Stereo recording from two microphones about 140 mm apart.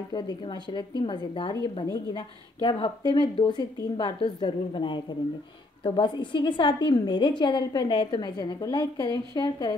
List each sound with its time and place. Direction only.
0.1 s a woman's voice: 30° left (ahead or behind)